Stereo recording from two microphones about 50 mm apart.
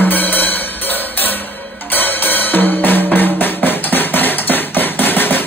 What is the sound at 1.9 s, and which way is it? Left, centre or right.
Drum, left.